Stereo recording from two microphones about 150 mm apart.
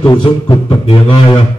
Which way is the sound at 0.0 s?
30° left (ahead or behind).